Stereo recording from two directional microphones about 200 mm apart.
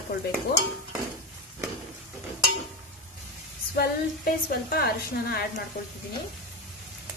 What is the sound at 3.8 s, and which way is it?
A woman's voice, 50° left (ahead or behind).